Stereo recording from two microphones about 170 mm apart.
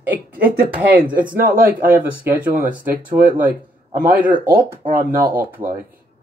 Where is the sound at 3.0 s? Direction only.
55° right (ahead or behind).